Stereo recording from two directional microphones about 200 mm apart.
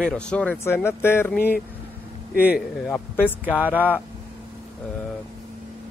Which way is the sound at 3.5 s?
10° right (ahead or behind).